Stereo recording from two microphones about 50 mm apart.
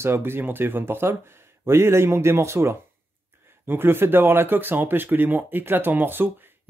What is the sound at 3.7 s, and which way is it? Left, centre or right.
Speech, right.